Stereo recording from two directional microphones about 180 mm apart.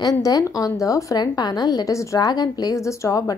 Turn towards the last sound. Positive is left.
turn(degrees=20)  # may be behind; listen again after turning